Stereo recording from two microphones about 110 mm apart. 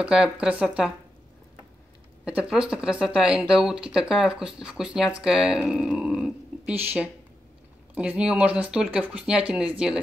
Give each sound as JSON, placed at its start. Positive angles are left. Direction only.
{"t": 0.0, "sound": "speech", "side_deg": -10}
{"t": 2.2, "sound": "speech", "side_deg": -10}
{"t": 6.7, "sound": "speech", "side_deg": -15}